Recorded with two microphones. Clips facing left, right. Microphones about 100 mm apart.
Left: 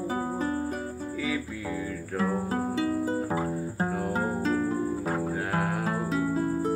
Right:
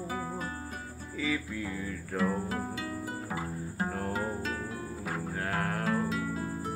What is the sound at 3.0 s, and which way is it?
Guitar, 35° left (ahead or behind).